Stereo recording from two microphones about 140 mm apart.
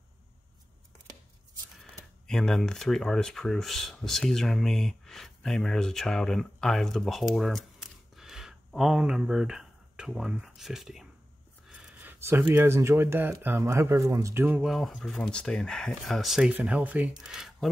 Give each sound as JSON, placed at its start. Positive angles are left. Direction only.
{"t": 2.2, "sound": "speech", "side_deg": 5}
{"t": 14.7, "sound": "speech", "side_deg": 0}